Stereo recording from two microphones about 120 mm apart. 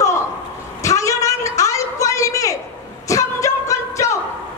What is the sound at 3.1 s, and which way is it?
Singing, 25° left (ahead or behind).